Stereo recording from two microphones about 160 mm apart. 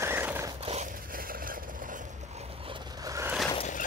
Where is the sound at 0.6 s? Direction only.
40° right (ahead or behind).